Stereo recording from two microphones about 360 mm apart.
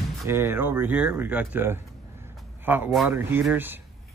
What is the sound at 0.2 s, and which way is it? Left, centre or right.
Speech, centre.